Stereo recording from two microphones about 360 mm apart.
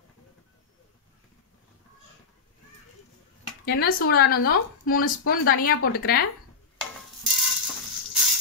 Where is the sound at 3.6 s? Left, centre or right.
Left.